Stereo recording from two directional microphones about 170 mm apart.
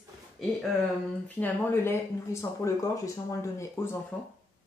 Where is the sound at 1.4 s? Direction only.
15° left (ahead or behind).